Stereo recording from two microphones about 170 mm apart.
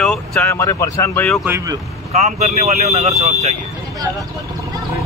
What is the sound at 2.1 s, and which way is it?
Speech, 40° right (ahead or behind).